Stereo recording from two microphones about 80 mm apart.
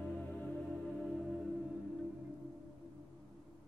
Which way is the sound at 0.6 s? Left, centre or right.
Centre.